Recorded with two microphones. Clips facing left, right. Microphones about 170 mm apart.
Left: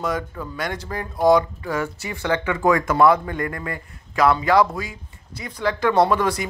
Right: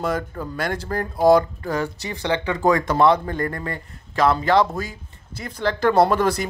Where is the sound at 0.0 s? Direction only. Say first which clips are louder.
Right 1 dB; 30° right (ahead or behind).